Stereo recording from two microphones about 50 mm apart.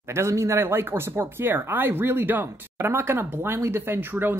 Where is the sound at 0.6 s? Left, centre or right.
Right.